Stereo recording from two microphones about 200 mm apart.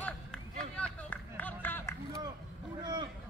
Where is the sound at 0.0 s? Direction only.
5° left (ahead or behind).